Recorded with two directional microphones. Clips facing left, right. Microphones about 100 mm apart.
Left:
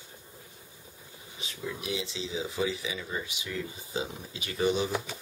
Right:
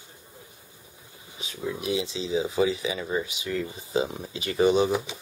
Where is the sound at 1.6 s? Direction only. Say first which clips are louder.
Right 6 dB; 30° right (ahead or behind).